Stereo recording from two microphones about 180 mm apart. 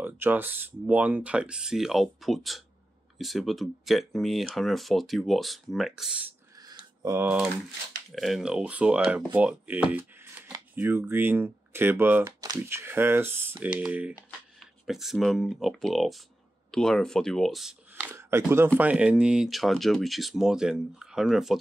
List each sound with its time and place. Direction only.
0.0 s speech: 10° right (ahead or behind)
7.0 s speech: 15° right (ahead or behind)
8.1 s speech: centre (ahead or behind)
18.1 s speech: 15° right (ahead or behind)